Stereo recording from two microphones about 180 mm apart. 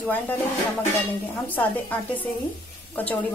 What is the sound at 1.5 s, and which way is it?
Speech, 10° left (ahead or behind).